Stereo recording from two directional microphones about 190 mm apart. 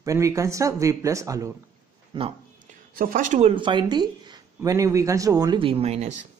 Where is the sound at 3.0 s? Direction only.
45° right (ahead or behind).